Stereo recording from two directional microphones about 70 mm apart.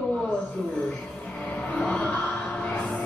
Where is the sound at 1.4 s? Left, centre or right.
Centre.